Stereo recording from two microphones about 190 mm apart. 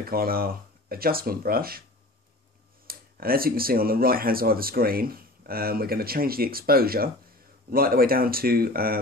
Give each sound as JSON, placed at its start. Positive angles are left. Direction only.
{"t": 0.1, "sound": "speech", "side_deg": -50}
{"t": 2.9, "sound": "speech", "side_deg": -50}